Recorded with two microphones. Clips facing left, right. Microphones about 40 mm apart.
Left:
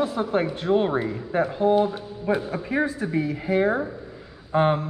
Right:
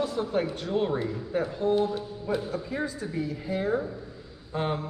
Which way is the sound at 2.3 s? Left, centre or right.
Left.